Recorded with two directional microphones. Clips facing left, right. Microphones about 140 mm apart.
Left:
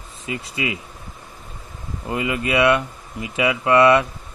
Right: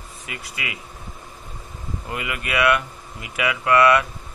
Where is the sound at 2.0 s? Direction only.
25° left (ahead or behind).